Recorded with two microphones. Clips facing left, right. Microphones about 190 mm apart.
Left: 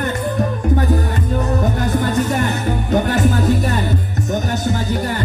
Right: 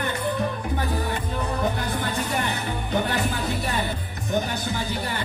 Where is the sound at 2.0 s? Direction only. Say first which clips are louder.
Left 9 dB; 45° left (ahead or behind).